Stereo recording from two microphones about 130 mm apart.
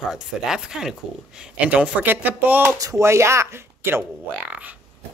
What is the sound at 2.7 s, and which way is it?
Speech, 25° right (ahead or behind).